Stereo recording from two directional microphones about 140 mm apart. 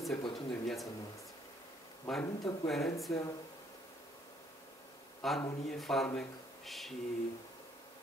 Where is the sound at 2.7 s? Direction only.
Centre (ahead or behind).